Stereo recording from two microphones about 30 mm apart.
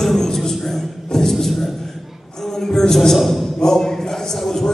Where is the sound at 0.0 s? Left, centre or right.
Centre.